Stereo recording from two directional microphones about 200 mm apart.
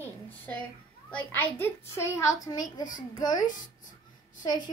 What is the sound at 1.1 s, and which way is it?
A child's voice, 10° left (ahead or behind).